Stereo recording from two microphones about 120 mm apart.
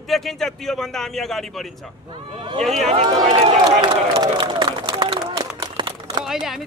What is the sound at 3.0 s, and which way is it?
Speech, 40° right (ahead or behind).